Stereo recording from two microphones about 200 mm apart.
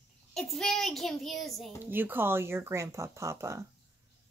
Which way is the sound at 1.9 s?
10° right (ahead or behind).